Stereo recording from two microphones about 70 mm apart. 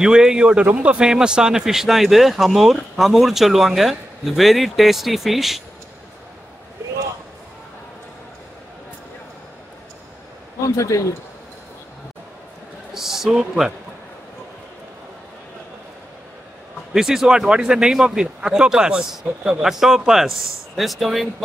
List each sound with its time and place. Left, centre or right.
0.0 s speech: centre
10.8 s a man's voice: left
12.9 s speech: centre
16.9 s speech: centre